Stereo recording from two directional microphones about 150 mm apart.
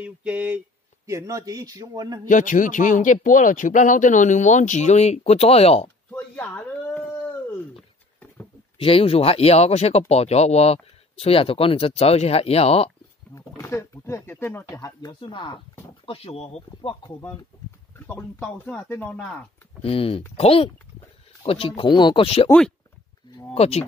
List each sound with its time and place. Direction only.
0.0 s a sound: 10° right (ahead or behind)
1.0 s a man's voice: 20° right (ahead or behind)
2.2 s speech: 60° left (ahead or behind); by 5.9 s 45° left (ahead or behind)
6.1 s a sound: 10° left (ahead or behind)
8.7 s speech: 40° left (ahead or behind)
13.3 s speech: 20° left (ahead or behind); by 17.1 s 40° left (ahead or behind)
17.9 s speech: 15° left (ahead or behind)
19.8 s speech: 40° left (ahead or behind)
23.5 s speech: 45° left (ahead or behind)